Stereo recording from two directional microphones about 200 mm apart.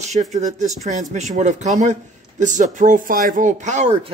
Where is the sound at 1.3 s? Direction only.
35° right (ahead or behind).